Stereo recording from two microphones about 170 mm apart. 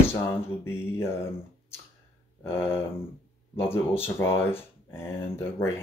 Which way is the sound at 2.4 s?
15° left (ahead or behind).